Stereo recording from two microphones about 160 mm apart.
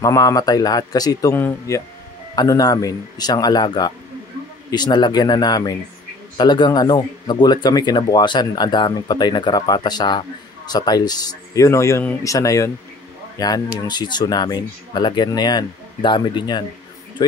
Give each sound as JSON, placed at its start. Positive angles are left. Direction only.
{"t": 0.0, "sound": "speech", "side_deg": 20}
{"t": 1.3, "sound": "speech", "side_deg": 15}